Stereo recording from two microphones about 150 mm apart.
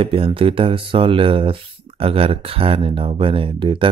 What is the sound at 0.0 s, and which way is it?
Speech, 40° right (ahead or behind).